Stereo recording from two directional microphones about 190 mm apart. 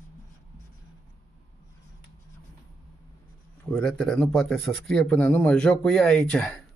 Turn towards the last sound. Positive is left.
turn(degrees=5)  # may be behind; listen again after turning